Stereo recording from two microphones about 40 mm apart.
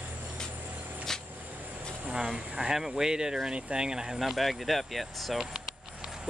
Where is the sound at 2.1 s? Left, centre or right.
Centre.